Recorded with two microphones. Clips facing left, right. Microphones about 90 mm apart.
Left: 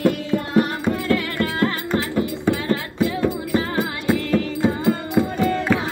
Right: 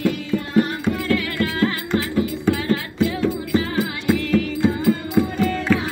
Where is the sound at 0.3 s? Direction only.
50° left (ahead or behind).